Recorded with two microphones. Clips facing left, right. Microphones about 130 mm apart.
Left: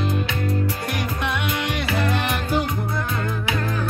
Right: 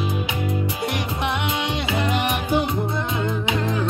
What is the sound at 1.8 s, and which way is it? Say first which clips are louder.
Music: right 1 dB; 20° right (ahead or behind).